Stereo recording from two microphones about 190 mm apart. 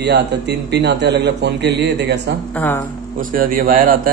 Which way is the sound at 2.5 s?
10° left (ahead or behind).